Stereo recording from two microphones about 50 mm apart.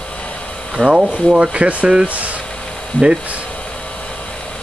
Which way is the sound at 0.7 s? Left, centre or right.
Centre.